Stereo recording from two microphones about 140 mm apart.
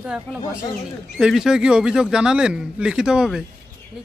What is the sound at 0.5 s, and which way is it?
Speech, 20° left (ahead or behind).